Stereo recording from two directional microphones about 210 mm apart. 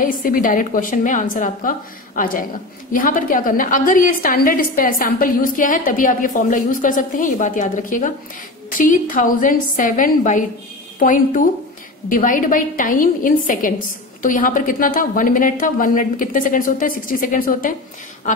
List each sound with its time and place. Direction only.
0.0 s a woman's voice: 40° left (ahead or behind)